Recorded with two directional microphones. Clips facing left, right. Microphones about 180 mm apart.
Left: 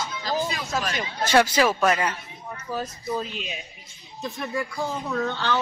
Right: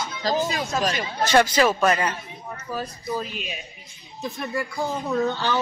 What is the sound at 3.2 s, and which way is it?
Speech, 25° left (ahead or behind).